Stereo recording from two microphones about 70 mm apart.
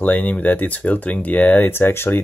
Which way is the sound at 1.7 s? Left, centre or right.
Left.